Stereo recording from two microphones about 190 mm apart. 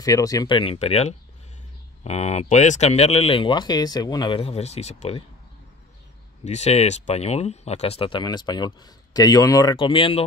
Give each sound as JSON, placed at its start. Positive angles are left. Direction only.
{"t": 0.0, "sound": "speech", "side_deg": 20}
{"t": 6.4, "sound": "speech", "side_deg": 35}